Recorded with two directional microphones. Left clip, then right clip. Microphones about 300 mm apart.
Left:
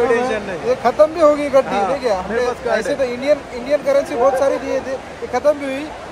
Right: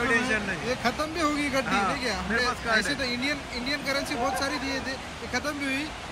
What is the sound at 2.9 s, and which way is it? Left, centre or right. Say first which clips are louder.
Speech: left 12 dB; centre.